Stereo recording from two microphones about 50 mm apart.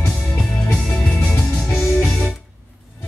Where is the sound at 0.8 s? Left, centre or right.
Left.